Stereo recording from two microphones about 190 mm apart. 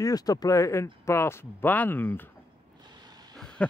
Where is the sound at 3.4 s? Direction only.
5° left (ahead or behind).